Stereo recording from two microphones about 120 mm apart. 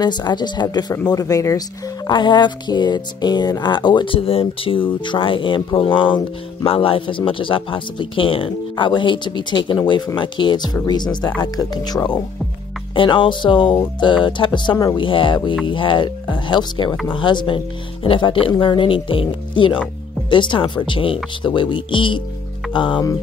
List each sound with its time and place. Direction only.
0.0 s speech: 35° left (ahead or behind)
2.0 s speech: 40° left (ahead or behind)